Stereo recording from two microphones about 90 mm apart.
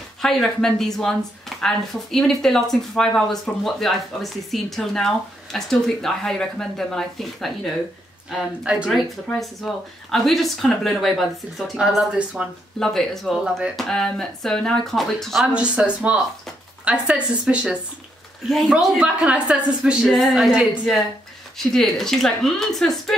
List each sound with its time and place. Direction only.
0.2 s speech: 5° left (ahead or behind)
8.6 s speech: 10° right (ahead or behind)
10.1 s speech: centre (ahead or behind)
12.4 s speech: 15° right (ahead or behind)
12.7 s speech: 5° left (ahead or behind)
15.4 s speech: 10° right (ahead or behind)
18.4 s speech: centre (ahead or behind)
21.5 s speech: 5° left (ahead or behind)